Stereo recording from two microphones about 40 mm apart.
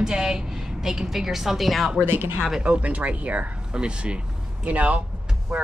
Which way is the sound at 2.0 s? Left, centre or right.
Right.